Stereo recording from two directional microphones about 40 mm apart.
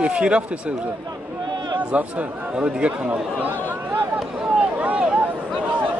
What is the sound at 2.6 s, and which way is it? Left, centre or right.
Speech, right.